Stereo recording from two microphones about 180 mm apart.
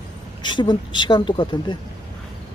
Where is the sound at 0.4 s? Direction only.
25° left (ahead or behind).